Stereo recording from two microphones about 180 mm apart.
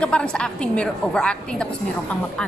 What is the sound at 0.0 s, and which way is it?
A woman's voice, 5° left (ahead or behind).